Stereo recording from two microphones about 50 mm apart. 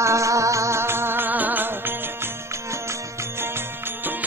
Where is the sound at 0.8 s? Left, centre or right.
Right.